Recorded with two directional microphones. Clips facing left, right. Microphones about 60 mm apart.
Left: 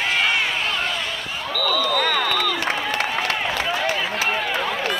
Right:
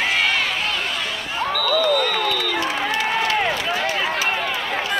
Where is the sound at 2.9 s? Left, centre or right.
Left.